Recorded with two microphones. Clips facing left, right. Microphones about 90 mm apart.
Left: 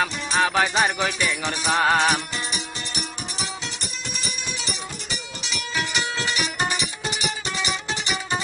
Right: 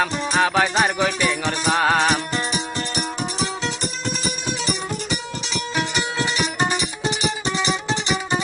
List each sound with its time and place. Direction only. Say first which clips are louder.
0.0 s music: right 3 dB; centre (ahead or behind)
2.3 s music: right 6 dB; 45° right (ahead or behind)
5.8 s music: right 3 dB; 20° right (ahead or behind)